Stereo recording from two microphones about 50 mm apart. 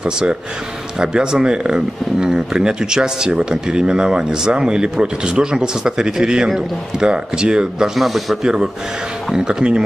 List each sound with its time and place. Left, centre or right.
0.0 s speech: centre
9.3 s speech: centre